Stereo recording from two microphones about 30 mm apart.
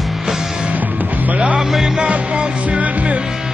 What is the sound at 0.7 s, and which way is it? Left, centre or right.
Music, right.